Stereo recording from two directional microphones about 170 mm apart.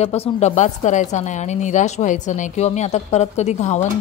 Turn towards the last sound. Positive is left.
turn(degrees=45)  # may be behind; listen again after turning